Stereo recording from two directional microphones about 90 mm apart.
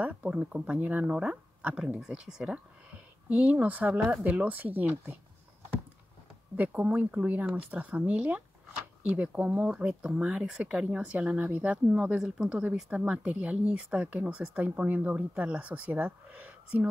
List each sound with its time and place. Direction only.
0.0 s speech: 15° right (ahead or behind)
6.5 s speech: 15° right (ahead or behind)